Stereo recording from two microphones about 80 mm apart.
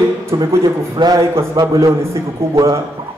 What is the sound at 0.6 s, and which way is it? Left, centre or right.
A man's voice, right.